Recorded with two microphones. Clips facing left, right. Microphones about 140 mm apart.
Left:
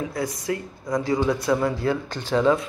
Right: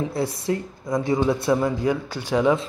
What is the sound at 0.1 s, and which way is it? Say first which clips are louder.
Speech: right 2 dB; 30° right (ahead or behind).